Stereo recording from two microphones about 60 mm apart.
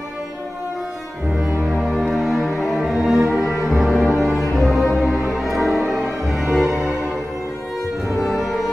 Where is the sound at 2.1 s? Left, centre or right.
Centre.